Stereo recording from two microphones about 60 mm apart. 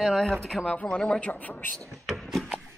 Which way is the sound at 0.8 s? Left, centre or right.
Centre.